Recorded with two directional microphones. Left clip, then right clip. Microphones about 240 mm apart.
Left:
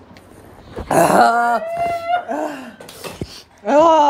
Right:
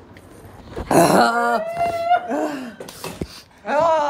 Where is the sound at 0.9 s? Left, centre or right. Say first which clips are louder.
Left 2 dB; centre.